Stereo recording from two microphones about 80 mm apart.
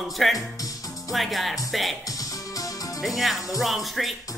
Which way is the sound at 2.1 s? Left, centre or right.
Left.